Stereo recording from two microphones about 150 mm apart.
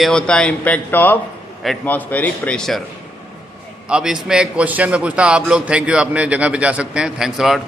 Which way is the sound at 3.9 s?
5° right (ahead or behind).